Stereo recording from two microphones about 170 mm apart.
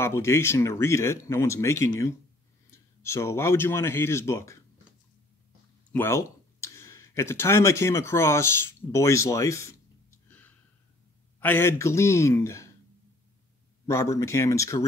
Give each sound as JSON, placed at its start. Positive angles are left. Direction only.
{"t": 0.0, "sound": "speech", "side_deg": 15}
{"t": 5.9, "sound": "speech", "side_deg": 15}
{"t": 11.3, "sound": "speech", "side_deg": 10}
{"t": 13.8, "sound": "speech", "side_deg": 15}